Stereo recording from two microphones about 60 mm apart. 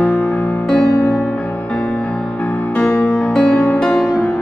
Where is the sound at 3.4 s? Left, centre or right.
Left.